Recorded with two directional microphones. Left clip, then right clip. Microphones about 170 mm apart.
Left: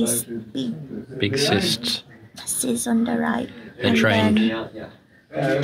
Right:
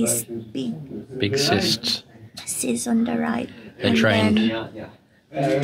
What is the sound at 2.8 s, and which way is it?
Speech, 15° right (ahead or behind).